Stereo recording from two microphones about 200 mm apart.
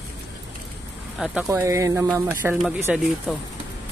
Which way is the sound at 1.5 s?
15° right (ahead or behind).